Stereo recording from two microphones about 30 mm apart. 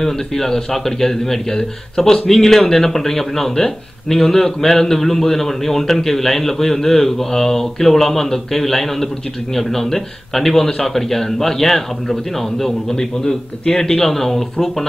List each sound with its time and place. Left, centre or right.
0.0 s speech: centre